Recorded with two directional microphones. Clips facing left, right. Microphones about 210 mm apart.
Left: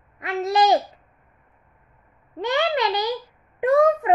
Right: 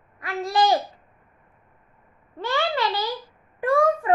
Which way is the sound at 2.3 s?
20° left (ahead or behind).